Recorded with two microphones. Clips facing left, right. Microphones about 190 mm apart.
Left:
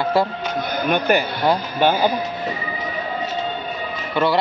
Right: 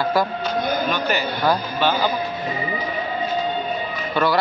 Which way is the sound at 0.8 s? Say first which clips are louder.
Left 4 dB; 55° left (ahead or behind).